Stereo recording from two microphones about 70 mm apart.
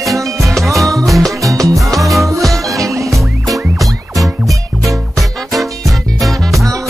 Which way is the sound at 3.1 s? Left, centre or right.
Centre.